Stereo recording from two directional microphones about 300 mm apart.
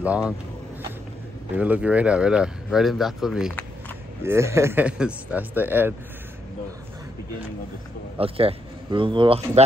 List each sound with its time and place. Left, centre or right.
1.6 s speech: centre
8.2 s speech: centre